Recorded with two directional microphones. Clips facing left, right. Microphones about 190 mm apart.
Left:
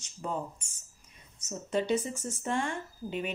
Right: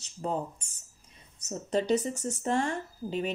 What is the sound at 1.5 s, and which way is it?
A woman's voice, 35° right (ahead or behind).